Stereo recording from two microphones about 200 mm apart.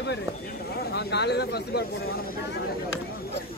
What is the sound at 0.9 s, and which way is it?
Speech, 60° left (ahead or behind).